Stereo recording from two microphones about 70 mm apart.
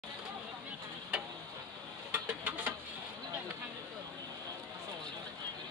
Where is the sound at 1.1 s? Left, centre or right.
Centre.